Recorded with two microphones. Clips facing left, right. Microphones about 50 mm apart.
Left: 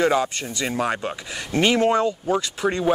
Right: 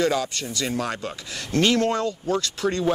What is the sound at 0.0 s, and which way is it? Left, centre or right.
Speech, left.